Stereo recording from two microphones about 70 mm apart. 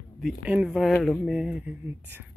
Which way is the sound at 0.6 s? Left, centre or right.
Centre.